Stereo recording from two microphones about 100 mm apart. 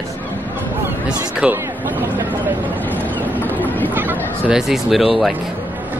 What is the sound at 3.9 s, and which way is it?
Chatter, 20° right (ahead or behind).